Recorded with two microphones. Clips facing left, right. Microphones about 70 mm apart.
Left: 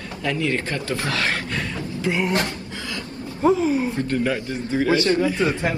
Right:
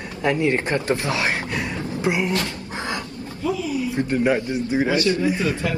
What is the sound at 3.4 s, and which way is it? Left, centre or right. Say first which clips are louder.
Speech: left 6 dB; left.